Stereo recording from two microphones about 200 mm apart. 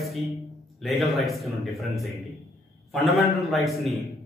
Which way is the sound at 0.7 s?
Centre (ahead or behind).